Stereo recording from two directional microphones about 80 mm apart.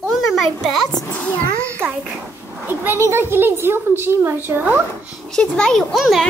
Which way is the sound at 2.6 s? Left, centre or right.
Right.